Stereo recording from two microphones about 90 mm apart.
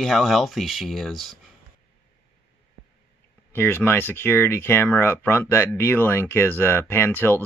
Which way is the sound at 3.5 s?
25° left (ahead or behind).